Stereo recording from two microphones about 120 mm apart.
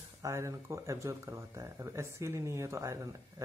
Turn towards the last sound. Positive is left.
turn(degrees=-25)  # may be behind; listen again after turning